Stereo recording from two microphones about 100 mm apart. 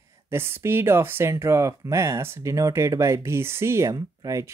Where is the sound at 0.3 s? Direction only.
25° right (ahead or behind).